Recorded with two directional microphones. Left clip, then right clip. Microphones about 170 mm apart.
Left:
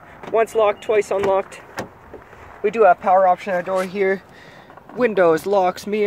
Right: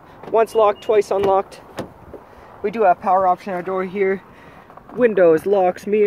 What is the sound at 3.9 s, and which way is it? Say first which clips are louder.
Speech: even; 30° left (ahead or behind).